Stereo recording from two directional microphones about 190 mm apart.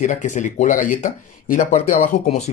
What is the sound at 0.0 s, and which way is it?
Speech, 40° left (ahead or behind).